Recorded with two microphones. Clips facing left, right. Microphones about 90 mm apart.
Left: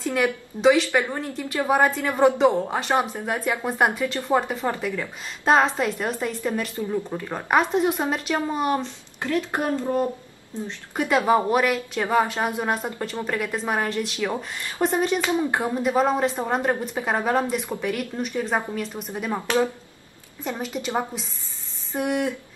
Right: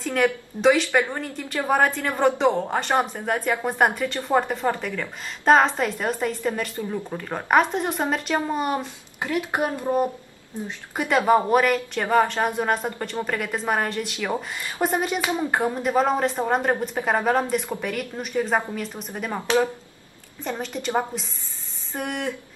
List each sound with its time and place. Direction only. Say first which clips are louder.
0.0 s speech: right 1 dB; 5° left (ahead or behind)
8.7 s speech: left 1 dB; 15° right (ahead or behind)
11.0 s speech: right 1 dB; centre (ahead or behind)
15.5 s speech: right 1 dB; centre (ahead or behind)
20.4 s speech: even; 5° left (ahead or behind)
21.9 s speech: left 4 dB; 5° left (ahead or behind)